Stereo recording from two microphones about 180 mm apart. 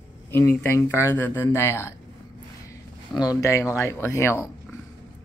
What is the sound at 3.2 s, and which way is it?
Speech, 20° left (ahead or behind).